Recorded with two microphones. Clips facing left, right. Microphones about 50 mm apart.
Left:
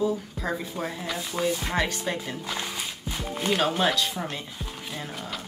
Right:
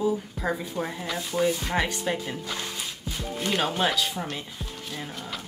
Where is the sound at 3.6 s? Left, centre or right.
Centre.